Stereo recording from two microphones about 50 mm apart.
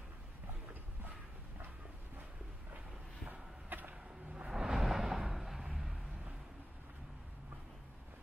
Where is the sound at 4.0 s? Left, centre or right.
Centre.